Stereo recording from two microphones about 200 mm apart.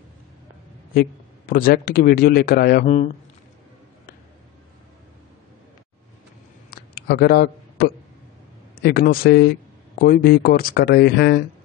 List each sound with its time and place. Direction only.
0.9 s speech: 45° left (ahead or behind)
6.7 s a sound: 50° left (ahead or behind)
8.7 s speech: 50° left (ahead or behind)